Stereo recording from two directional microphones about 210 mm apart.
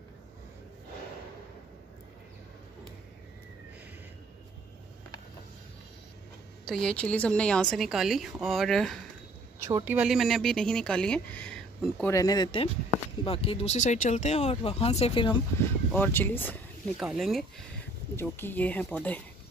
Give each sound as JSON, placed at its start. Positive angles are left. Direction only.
{"t": 6.6, "sound": "a woman's voice", "side_deg": 5}
{"t": 9.7, "sound": "speech", "side_deg": -15}
{"t": 9.9, "sound": "a woman's voice", "side_deg": 0}
{"t": 12.1, "sound": "speech", "side_deg": 15}
{"t": 15.9, "sound": "speech", "side_deg": 10}
{"t": 18.1, "sound": "speech", "side_deg": 10}